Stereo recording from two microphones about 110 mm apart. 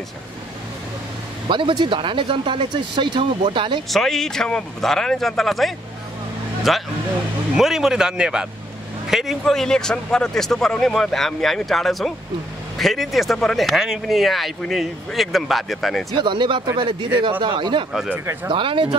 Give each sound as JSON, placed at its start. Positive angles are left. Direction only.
{"t": 1.5, "sound": "speech", "side_deg": -45}
{"t": 3.9, "sound": "speech", "side_deg": 5}
{"t": 16.2, "sound": "speech", "side_deg": -45}
{"t": 18.1, "sound": "speech", "side_deg": -20}
{"t": 18.5, "sound": "speech", "side_deg": -50}